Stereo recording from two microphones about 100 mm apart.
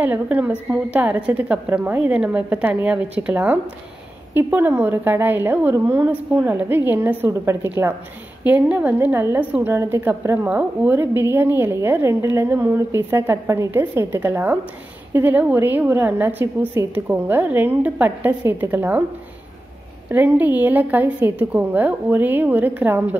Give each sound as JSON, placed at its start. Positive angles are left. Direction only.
{"t": 0.0, "sound": "a woman's voice", "side_deg": -15}
{"t": 10.5, "sound": "a woman's voice", "side_deg": -15}
{"t": 20.1, "sound": "a woman's voice", "side_deg": -20}